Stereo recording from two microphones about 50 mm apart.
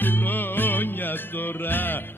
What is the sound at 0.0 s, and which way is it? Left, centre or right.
Music, left.